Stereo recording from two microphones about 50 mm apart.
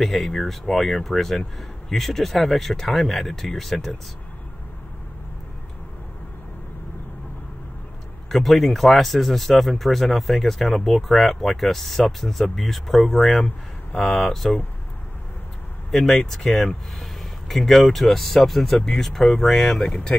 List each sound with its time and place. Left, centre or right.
0.0 s speech: centre
8.3 s speech: centre
15.9 s a man's voice: centre